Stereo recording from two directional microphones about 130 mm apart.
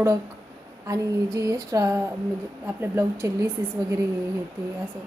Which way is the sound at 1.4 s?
25° right (ahead or behind).